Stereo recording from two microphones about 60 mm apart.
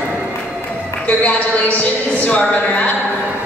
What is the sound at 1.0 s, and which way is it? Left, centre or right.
Speech, left.